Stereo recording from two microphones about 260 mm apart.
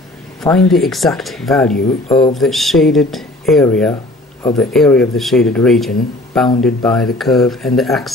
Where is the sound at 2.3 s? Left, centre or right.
Centre.